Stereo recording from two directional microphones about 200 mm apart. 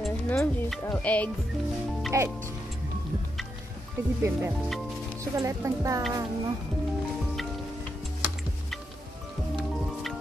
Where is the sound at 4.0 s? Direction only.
15° right (ahead or behind).